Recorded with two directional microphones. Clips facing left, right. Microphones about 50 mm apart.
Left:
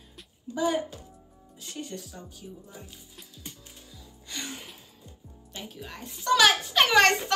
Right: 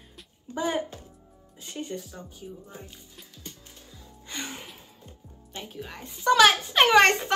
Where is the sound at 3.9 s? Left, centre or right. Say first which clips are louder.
Right 2 dB; right.